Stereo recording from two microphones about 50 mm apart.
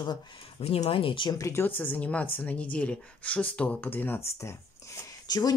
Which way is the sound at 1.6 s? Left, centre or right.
Left.